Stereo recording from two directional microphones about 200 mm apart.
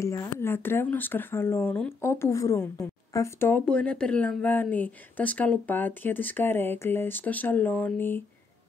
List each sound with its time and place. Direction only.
0.0 s speech: 15° left (ahead or behind)